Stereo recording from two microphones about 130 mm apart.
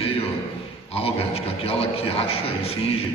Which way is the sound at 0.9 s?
50° left (ahead or behind).